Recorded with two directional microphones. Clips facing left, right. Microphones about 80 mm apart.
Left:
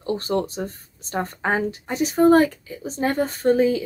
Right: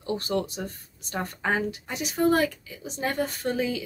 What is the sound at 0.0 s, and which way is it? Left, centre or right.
Speech, left.